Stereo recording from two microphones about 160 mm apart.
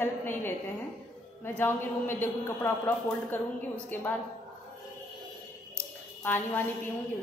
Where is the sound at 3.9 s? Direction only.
10° left (ahead or behind).